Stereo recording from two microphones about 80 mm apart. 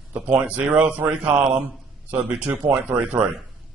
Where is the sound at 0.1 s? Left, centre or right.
Centre.